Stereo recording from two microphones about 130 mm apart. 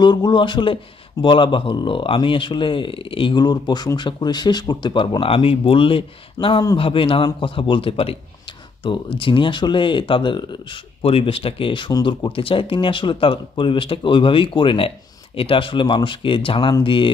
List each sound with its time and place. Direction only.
0.0 s speech: 35° left (ahead or behind)
6.4 s speech: 30° left (ahead or behind)
6.8 s speech: 45° left (ahead or behind)